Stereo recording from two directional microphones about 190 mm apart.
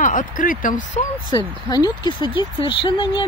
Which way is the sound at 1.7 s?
20° left (ahead or behind).